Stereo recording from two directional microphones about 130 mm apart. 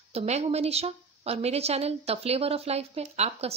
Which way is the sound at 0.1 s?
55° right (ahead or behind).